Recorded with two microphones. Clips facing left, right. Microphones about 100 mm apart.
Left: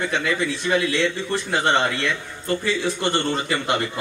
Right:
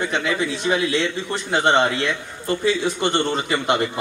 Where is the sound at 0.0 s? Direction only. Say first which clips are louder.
Right 1 dB; 15° right (ahead or behind).